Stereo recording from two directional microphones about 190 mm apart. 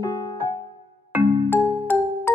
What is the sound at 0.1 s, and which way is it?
Music, 25° left (ahead or behind).